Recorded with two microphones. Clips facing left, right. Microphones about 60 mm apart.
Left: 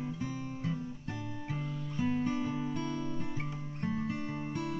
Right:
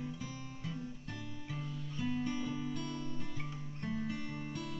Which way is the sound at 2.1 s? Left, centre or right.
Left.